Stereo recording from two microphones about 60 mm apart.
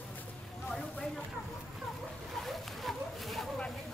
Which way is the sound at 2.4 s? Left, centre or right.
Centre.